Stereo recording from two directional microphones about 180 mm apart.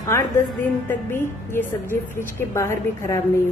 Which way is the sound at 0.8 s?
10° left (ahead or behind).